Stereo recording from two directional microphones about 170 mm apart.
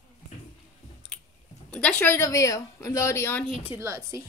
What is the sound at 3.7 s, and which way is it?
Speech, 15° right (ahead or behind).